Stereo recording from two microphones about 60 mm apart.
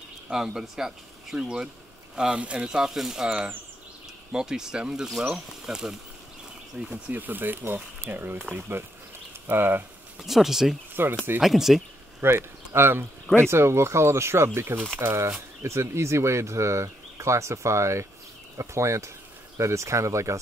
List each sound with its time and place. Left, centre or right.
0.3 s speech: centre
6.9 s speech: right
9.5 s speech: right
10.2 s speech: centre
12.2 s speech: right